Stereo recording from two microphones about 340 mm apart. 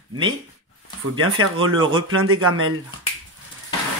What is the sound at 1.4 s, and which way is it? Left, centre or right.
A man's voice, right.